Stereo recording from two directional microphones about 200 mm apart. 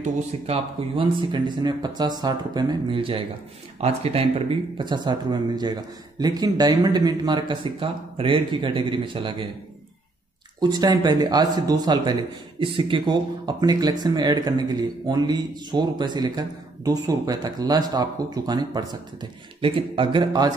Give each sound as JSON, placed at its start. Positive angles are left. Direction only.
{"t": 0.5, "sound": "speech", "side_deg": -25}
{"t": 10.6, "sound": "speech", "side_deg": -20}